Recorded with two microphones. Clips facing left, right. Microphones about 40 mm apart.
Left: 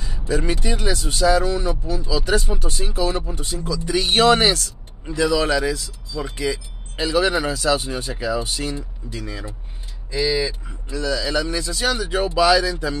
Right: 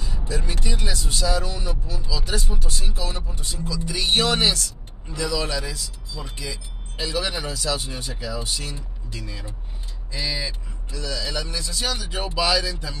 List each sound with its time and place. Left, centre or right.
0.3 s speech: left
1.3 s speech: left
10.9 s speech: left
12.4 s a sound: left